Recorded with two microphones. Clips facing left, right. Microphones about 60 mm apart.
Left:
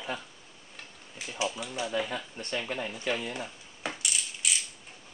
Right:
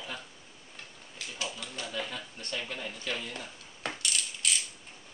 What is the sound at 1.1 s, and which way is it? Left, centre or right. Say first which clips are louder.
Speech: left 6 dB; centre.